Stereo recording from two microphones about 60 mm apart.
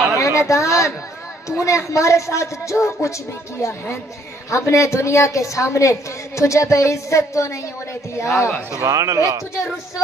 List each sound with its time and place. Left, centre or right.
0.2 s a woman's voice: left
4.5 s a woman's voice: left
8.8 s speech: right